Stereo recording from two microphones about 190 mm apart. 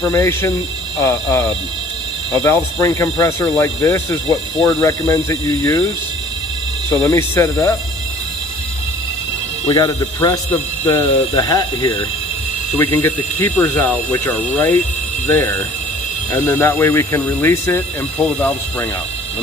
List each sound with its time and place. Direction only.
0.1 s speech: 15° left (ahead or behind)
6.9 s speech: 15° left (ahead or behind)
9.7 s speech: 20° left (ahead or behind)